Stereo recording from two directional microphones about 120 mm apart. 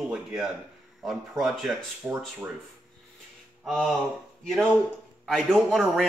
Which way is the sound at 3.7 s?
Centre (ahead or behind).